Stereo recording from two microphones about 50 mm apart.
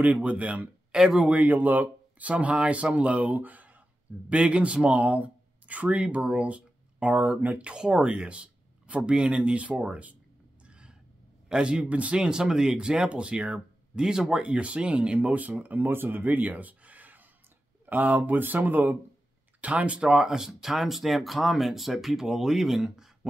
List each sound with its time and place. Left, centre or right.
0.0 s speech: right
0.9 s speech: centre
1.3 s speech: right
4.3 s speech: right
7.7 s speech: centre
10.7 s a sound: centre
11.4 s speech: centre
15.1 s speech: right; by 23.1 s centre